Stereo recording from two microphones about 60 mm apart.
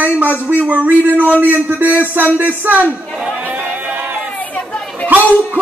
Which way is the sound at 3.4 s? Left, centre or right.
Right.